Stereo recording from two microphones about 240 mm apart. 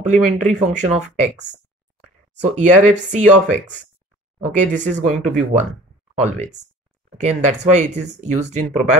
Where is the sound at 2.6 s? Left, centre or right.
Right.